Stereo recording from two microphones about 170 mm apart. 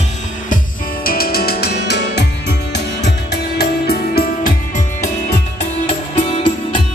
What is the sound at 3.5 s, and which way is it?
Music, 65° left (ahead or behind).